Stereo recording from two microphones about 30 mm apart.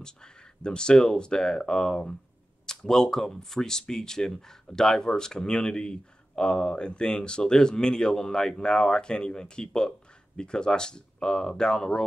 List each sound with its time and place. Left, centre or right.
0.0 s speech: left